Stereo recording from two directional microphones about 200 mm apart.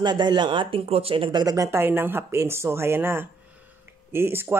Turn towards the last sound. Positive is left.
turn(degrees=-10)  # may be behind; listen again after turning